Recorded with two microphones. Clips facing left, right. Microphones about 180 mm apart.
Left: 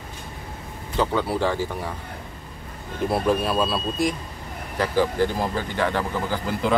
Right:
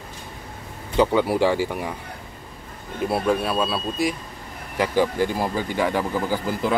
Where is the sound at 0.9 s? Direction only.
15° right (ahead or behind).